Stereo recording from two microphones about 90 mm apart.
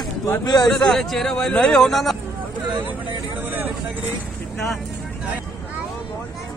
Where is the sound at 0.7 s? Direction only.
5° left (ahead or behind).